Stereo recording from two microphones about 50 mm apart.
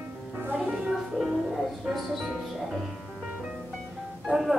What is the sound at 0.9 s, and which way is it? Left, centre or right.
Speech, centre.